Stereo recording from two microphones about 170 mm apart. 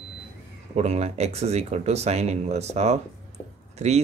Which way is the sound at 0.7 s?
40° right (ahead or behind).